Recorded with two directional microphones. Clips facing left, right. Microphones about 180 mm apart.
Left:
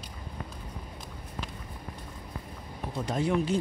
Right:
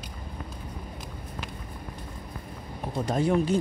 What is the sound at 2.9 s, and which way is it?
Speech, 45° right (ahead or behind).